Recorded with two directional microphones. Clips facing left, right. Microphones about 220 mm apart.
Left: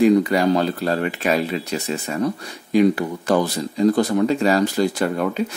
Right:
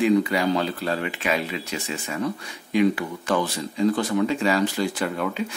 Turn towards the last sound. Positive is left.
turn(degrees=40)  # may be behind; listen again after turning